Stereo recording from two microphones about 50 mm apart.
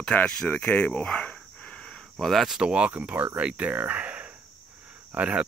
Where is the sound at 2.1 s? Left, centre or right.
Centre.